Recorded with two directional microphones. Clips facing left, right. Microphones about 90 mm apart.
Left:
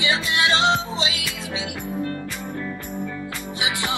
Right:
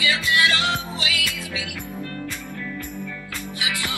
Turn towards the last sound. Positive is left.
turn(degrees=20)  # may be behind; listen again after turning